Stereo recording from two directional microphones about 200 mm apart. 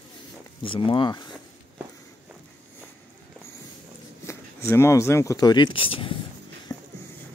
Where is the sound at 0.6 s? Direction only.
25° left (ahead or behind).